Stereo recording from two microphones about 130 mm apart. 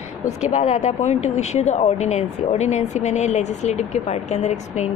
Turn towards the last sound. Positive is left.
turn(degrees=65)  # may be behind; listen again after turning